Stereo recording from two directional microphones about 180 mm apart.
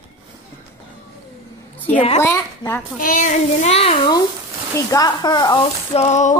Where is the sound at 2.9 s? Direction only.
50° left (ahead or behind).